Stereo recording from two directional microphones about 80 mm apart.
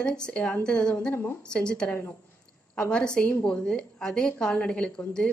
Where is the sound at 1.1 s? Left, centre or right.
Left.